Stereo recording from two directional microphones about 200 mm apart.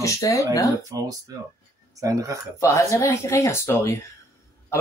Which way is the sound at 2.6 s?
15° left (ahead or behind).